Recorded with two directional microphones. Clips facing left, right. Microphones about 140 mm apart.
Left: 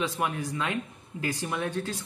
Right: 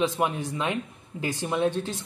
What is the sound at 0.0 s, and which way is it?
Speech, 25° right (ahead or behind).